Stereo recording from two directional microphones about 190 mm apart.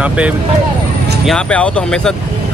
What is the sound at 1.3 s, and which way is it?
Speech, 5° left (ahead or behind).